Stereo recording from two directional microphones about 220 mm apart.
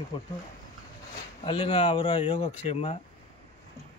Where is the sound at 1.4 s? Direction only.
25° left (ahead or behind).